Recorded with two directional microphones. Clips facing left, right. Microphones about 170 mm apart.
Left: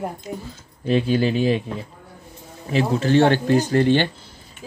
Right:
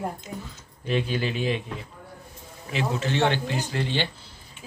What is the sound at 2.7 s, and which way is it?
Speech, 40° left (ahead or behind).